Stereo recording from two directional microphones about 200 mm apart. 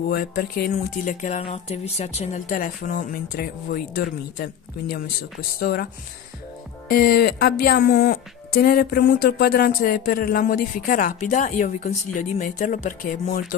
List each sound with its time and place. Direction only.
0.1 s speech: 45° left (ahead or behind)
6.9 s speech: 50° left (ahead or behind)